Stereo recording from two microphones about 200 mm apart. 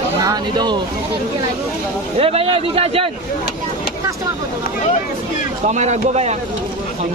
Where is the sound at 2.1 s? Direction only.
30° right (ahead or behind).